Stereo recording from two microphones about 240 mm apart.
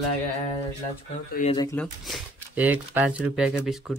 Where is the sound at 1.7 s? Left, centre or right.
Centre.